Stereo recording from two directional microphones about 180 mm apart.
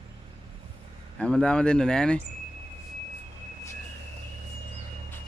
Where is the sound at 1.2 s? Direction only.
5° left (ahead or behind).